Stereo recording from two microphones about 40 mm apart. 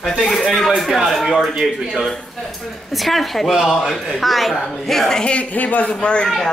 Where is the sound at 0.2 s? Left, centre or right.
Centre.